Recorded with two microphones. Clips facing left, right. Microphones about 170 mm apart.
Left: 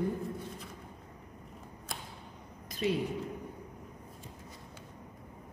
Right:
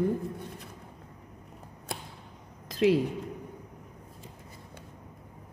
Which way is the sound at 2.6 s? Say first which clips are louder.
Right 8 dB; 90° right.